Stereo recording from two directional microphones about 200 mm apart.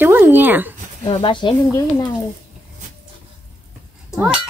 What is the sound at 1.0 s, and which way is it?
Speech, 25° left (ahead or behind).